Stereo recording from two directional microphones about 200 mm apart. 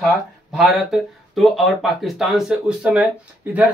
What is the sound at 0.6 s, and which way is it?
Speech, centre (ahead or behind).